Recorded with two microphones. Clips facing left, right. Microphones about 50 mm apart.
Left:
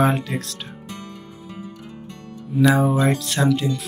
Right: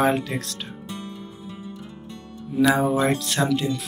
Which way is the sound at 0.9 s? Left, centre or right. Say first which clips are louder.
Right 2 dB; left.